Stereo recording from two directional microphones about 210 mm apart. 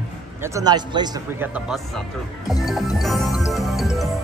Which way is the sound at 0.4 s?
15° right (ahead or behind).